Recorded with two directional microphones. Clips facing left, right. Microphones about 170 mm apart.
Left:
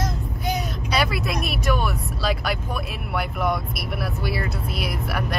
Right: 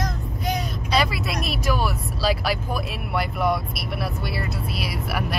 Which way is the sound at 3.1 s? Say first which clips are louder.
Right 1 dB; centre (ahead or behind).